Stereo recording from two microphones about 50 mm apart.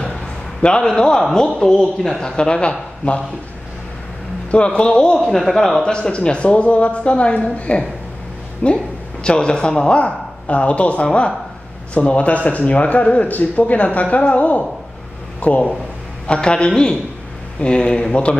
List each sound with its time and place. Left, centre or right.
0.0 s a sound: centre
1.2 s speech: centre
4.5 s speech: left
5.1 s speech: centre
5.9 s speech: centre
16.3 s speech: centre